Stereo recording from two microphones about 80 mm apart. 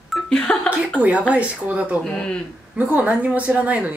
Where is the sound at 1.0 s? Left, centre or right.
Centre.